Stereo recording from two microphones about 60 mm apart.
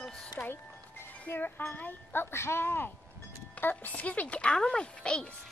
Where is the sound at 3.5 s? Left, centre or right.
Left.